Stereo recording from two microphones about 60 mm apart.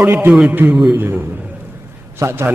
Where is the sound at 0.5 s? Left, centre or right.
Right.